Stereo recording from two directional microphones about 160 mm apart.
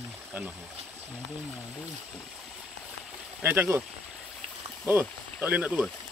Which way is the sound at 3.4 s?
10° right (ahead or behind).